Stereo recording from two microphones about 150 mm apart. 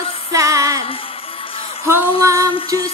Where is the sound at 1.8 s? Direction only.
15° right (ahead or behind).